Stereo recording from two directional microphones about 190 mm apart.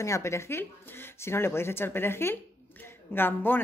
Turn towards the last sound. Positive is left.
turn(degrees=10)  # may be behind; listen again after turning